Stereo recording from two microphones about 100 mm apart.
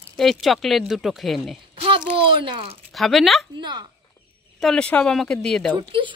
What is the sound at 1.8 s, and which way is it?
A child's voice, 60° right (ahead or behind).